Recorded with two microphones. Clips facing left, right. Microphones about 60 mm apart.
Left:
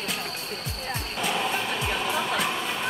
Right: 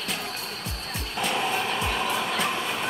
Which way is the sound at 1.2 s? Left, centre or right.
Centre.